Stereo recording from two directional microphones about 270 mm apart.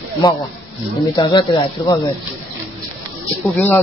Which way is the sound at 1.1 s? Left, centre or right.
Centre.